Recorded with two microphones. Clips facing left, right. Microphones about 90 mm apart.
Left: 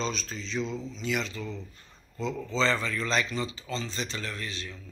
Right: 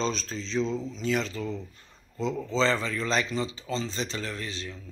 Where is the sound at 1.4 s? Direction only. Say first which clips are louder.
Right 4 dB; 20° right (ahead or behind).